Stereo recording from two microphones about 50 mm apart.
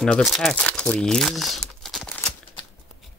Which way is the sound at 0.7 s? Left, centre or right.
Centre.